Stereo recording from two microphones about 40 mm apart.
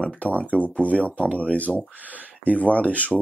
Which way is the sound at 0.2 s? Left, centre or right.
Left.